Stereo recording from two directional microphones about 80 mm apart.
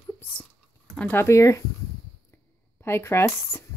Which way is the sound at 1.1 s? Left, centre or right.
Left.